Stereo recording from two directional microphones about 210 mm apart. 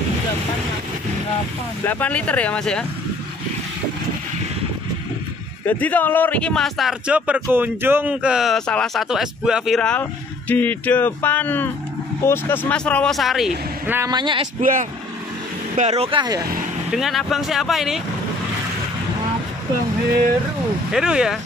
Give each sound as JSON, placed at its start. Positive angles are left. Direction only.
{"t": 1.9, "sound": "speech", "side_deg": 5}
{"t": 5.7, "sound": "a man's voice", "side_deg": 10}
{"t": 14.6, "sound": "speech", "side_deg": -40}
{"t": 16.9, "sound": "a man's voice", "side_deg": 0}
{"t": 20.9, "sound": "a man's voice", "side_deg": -5}